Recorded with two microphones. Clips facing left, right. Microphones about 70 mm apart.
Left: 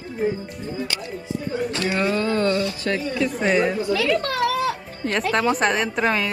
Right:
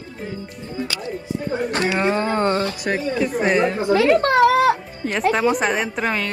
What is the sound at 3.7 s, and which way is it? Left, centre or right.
Speech, right.